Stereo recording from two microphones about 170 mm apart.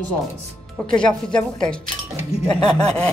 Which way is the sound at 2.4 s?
25° left (ahead or behind).